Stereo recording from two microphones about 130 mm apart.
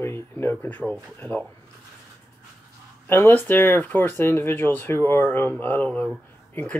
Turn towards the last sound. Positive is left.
turn(degrees=10)  # may be behind; listen again after turning